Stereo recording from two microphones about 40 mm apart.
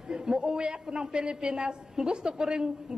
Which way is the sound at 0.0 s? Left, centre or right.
Centre.